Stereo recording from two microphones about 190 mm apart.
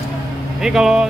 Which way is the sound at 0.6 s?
Centre (ahead or behind).